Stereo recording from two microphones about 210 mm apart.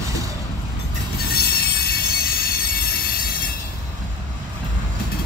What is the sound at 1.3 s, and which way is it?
Train wheels squealing, 45° left (ahead or behind).